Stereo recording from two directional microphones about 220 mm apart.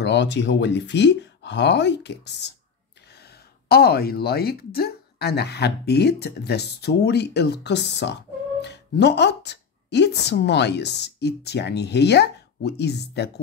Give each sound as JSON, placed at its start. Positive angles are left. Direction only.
{"t": 0.0, "sound": "a woman's voice", "side_deg": 50}